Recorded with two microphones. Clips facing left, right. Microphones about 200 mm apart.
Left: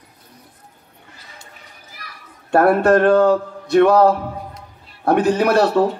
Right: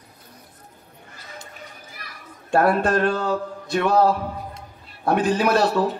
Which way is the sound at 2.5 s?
60° left (ahead or behind).